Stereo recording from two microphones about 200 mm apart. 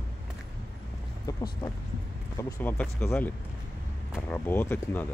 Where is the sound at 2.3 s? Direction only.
10° left (ahead or behind).